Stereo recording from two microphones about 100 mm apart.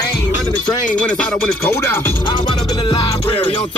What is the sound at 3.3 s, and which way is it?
Music, 70° left (ahead or behind).